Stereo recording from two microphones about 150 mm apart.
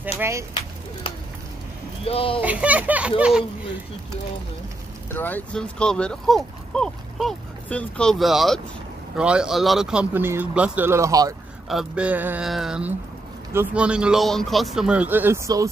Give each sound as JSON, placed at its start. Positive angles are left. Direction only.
{"t": 0.2, "sound": "speech", "side_deg": -20}
{"t": 2.0, "sound": "speech", "side_deg": 40}
{"t": 2.4, "sound": "a man's voice", "side_deg": -10}
{"t": 5.1, "sound": "a man's voice", "side_deg": 10}
{"t": 11.7, "sound": "a man's voice", "side_deg": -5}